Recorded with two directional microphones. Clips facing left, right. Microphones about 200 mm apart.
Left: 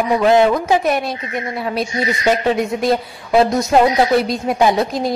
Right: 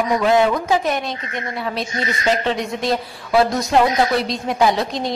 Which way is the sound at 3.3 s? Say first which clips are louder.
Left 3 dB; 20° left (ahead or behind).